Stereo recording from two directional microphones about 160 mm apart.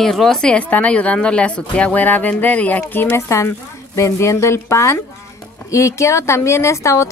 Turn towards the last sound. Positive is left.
turn(degrees=20)  # may be behind; listen again after turning